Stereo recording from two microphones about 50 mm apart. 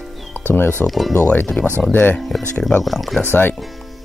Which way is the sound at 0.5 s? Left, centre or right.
Left.